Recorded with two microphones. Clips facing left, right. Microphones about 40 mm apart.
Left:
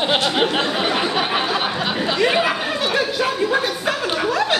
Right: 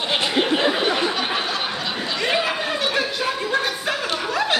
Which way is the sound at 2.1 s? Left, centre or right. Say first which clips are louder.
Left 3 dB; centre.